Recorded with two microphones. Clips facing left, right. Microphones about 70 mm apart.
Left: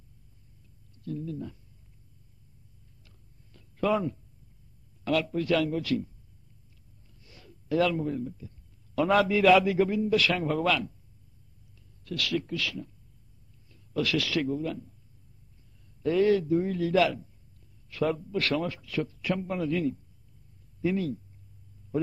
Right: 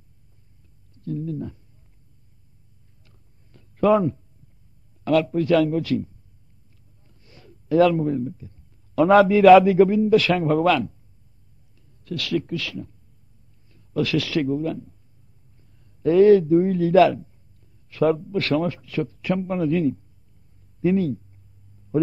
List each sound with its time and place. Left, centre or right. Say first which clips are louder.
1.0 s a man's voice: right 6 dB; right
3.5 s a sound: right 9 dB; right
5.0 s a man's voice: right 7 dB; right
7.2 s a sound: right 6 dB; right
7.8 s a man's voice: right 9 dB; right
12.0 s a man's voice: right 5 dB; right
16.0 s a man's voice: right 10 dB; right